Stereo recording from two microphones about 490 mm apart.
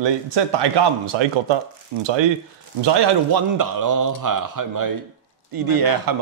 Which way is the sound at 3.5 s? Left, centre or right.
Right.